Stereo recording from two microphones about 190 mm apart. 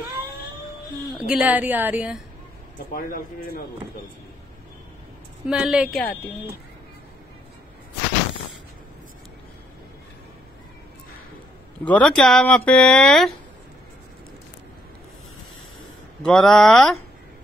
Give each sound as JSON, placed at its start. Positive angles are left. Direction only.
{"t": 1.1, "sound": "a woman's voice", "side_deg": -5}
{"t": 2.9, "sound": "a man's voice", "side_deg": 50}
{"t": 5.5, "sound": "speech", "side_deg": -5}
{"t": 11.8, "sound": "speech", "side_deg": 5}
{"t": 16.3, "sound": "speech", "side_deg": 5}